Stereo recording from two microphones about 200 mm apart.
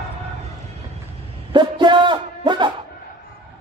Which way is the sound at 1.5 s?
25° right (ahead or behind).